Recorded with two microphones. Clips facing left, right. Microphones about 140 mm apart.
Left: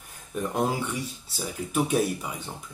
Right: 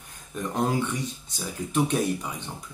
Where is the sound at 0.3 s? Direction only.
10° left (ahead or behind).